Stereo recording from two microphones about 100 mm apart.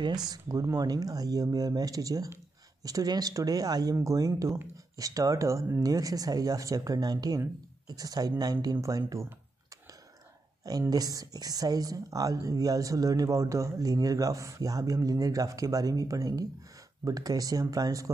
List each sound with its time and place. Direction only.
0.0 s speech: 45° right (ahead or behind)
10.9 s speech: 40° right (ahead or behind)